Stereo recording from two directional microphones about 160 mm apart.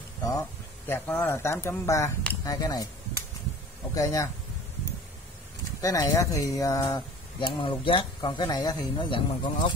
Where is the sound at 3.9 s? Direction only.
20° left (ahead or behind).